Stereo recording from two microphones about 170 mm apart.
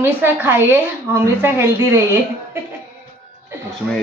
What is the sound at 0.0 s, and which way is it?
A woman's voice, 10° right (ahead or behind).